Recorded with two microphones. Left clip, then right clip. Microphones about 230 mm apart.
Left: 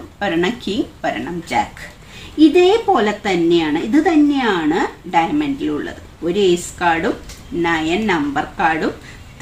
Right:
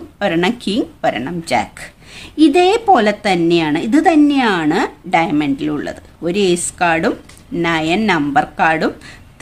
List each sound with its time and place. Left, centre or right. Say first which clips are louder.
0.2 s a woman's voice: right 2 dB; right